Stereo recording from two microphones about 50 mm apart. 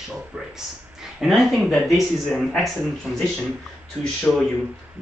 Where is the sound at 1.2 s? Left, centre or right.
Centre.